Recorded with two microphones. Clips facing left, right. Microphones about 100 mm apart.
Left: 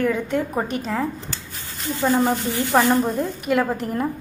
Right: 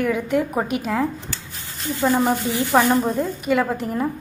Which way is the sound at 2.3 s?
20° right (ahead or behind).